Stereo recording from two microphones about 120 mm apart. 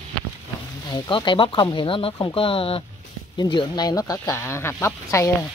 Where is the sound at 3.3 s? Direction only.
35° left (ahead or behind).